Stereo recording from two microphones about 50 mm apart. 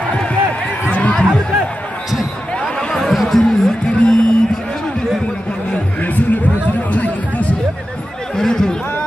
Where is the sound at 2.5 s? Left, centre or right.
Centre.